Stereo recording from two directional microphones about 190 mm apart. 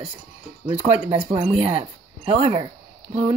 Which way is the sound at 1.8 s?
30° right (ahead or behind).